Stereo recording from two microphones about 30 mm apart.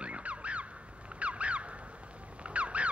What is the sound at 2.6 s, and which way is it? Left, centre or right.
Duck, right.